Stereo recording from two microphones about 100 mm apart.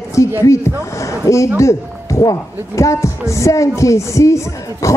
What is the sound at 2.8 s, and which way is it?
Speech, 30° left (ahead or behind).